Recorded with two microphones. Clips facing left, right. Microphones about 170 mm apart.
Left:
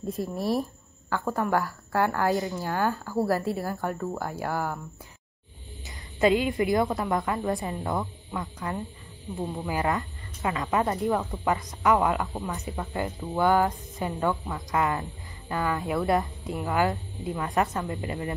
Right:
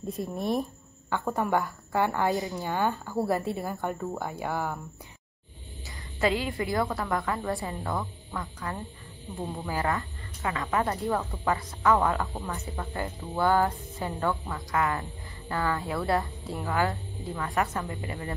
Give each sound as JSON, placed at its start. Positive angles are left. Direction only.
{"t": 0.1, "sound": "a woman's voice", "side_deg": 0}
{"t": 5.9, "sound": "a woman's voice", "side_deg": 20}